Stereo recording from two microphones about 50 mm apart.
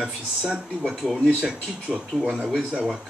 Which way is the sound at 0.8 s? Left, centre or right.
Centre.